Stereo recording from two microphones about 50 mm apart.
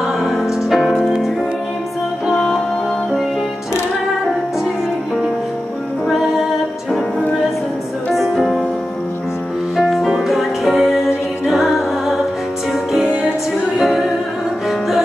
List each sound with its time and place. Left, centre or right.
0.0 s music: centre
8.1 s music: centre
9.8 s music: centre
13.7 s music: centre